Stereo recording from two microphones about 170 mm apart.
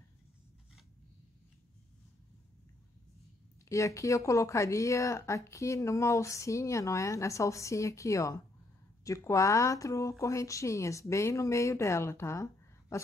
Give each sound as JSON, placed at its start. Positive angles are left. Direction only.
{"t": 3.6, "sound": "speech", "side_deg": 20}